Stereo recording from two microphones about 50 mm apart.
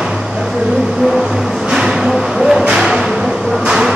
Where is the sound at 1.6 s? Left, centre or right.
Centre.